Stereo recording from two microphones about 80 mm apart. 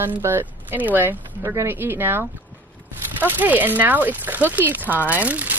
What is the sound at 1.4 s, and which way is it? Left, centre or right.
Speech, right.